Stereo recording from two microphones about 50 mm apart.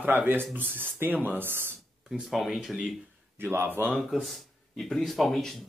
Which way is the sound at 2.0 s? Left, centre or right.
Centre.